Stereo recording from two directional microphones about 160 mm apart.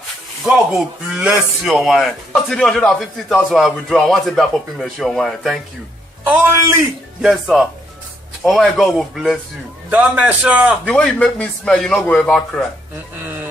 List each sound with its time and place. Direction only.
0.5 s speech: 5° right (ahead or behind)
6.2 s a man's voice: 15° right (ahead or behind)
7.2 s a man's voice: 5° right (ahead or behind)
10.9 s speech: 5° left (ahead or behind)